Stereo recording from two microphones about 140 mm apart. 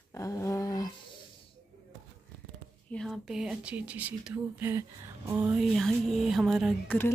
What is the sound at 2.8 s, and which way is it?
Speech, 5° left (ahead or behind).